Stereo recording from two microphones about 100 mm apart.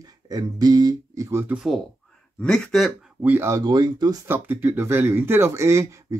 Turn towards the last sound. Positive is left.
turn(degrees=-30)  # may be behind; listen again after turning